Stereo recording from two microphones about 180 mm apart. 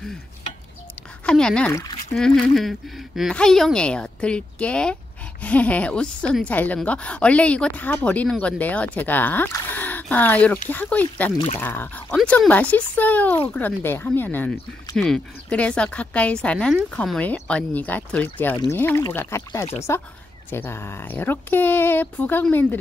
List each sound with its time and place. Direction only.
1.2 s speech: 5° left (ahead or behind)
2.1 s a woman's voice: 5° left (ahead or behind)